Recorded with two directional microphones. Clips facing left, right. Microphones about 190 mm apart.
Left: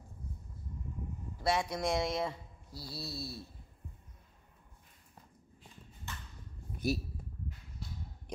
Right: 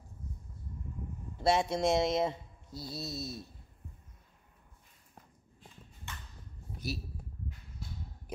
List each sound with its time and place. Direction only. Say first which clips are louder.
1.4 s speech: right 4 dB; 25° right (ahead or behind)
6.8 s speech: left 6 dB; 50° left (ahead or behind)